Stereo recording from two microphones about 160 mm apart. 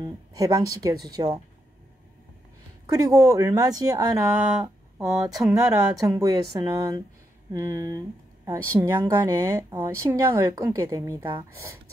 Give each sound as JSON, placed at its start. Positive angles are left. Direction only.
{"t": 0.0, "sound": "speech", "side_deg": -20}
{"t": 2.9, "sound": "speech", "side_deg": -20}
{"t": 4.4, "sound": "speech", "side_deg": -10}
{"t": 5.9, "sound": "speech", "side_deg": -20}